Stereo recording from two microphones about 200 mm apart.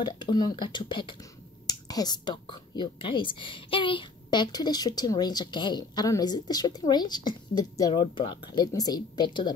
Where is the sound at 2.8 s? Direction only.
25° left (ahead or behind).